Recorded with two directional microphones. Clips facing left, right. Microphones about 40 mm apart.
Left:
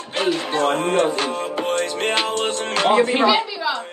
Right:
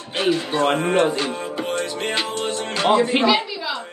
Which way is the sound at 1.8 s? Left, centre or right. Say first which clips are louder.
Left 3 dB; left.